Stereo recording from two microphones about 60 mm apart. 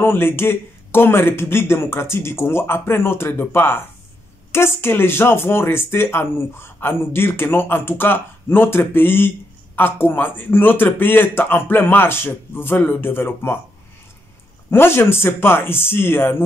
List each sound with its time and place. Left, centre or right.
0.0 s speech: left
14.7 s speech: left